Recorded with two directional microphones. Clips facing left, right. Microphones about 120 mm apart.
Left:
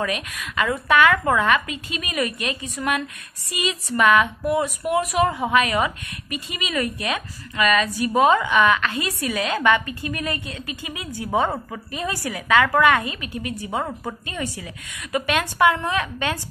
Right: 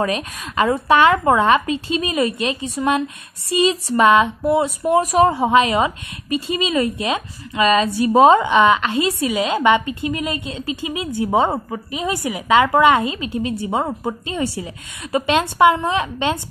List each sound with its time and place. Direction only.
0.0 s a woman's voice: 30° right (ahead or behind)